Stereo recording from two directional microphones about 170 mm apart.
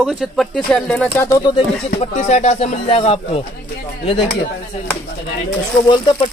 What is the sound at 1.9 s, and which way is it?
Speech, 45° left (ahead or behind).